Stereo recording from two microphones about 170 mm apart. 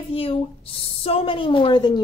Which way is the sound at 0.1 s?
35° left (ahead or behind).